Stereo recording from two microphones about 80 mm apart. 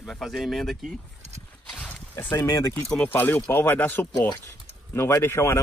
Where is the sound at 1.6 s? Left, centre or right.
Centre.